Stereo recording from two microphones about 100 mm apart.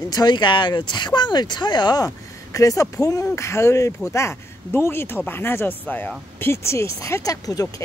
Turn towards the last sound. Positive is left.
turn(degrees=35)  # may be behind; listen again after turning